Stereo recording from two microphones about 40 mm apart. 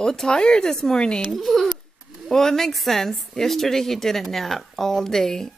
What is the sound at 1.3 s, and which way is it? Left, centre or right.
Speech, centre.